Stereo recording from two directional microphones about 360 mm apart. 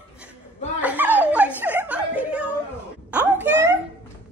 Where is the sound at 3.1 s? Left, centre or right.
Centre.